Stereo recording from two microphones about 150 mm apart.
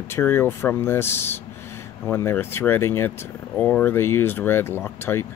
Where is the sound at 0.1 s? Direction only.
15° left (ahead or behind).